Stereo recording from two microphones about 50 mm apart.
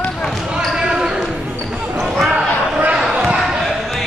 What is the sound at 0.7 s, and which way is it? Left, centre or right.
Basketball bounce, centre.